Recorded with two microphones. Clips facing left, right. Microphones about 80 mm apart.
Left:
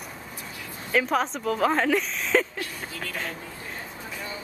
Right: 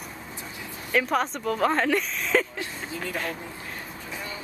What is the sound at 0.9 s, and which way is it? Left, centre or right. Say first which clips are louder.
A woman's voice: even; centre.